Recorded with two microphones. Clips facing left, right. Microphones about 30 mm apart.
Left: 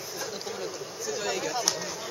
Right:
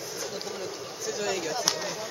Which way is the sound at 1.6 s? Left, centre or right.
Centre.